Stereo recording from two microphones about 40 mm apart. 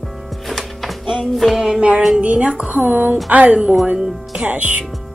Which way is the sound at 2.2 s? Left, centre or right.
Right.